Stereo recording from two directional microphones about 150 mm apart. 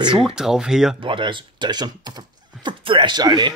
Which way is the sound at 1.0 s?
35° right (ahead or behind).